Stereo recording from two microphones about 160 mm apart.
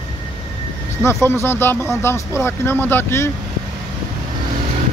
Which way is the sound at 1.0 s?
15° left (ahead or behind).